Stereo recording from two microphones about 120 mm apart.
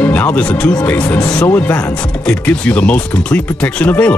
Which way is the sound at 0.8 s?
15° left (ahead or behind).